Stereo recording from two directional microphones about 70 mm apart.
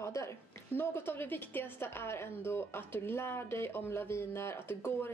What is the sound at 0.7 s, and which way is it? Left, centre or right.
A woman's voice, left.